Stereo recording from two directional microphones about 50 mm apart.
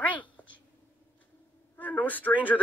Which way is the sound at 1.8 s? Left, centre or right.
Left.